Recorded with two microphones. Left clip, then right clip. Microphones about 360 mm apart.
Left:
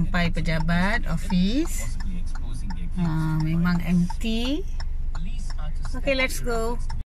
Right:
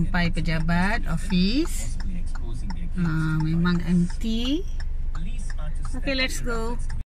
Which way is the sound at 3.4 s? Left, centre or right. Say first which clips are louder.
Right 1 dB; centre.